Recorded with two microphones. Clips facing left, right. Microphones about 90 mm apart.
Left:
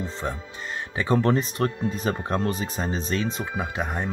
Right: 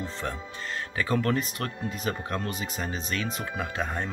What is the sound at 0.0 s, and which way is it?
Speech, 20° left (ahead or behind).